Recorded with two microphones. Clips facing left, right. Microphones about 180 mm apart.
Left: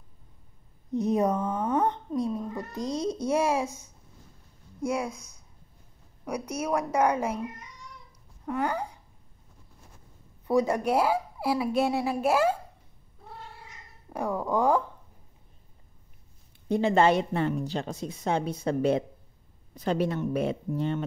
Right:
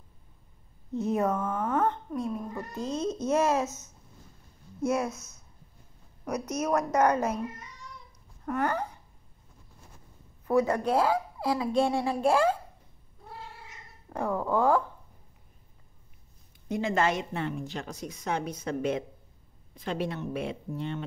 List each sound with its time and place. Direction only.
0.9 s speech: 15° left (ahead or behind)
8.5 s a sound: 10° left (ahead or behind)
10.4 s speech: 15° left (ahead or behind)
14.0 s speech: 10° left (ahead or behind)
16.6 s a woman's voice: 30° left (ahead or behind)